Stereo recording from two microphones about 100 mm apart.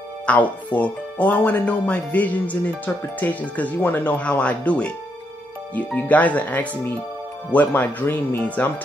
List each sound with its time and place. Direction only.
0.3 s speech: 15° left (ahead or behind)
5.9 s speech: 15° left (ahead or behind)